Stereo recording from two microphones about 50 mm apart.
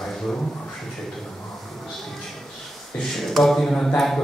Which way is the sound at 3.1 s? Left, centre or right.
Centre.